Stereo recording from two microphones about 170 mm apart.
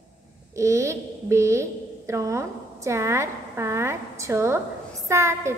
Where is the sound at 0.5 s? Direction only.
15° right (ahead or behind).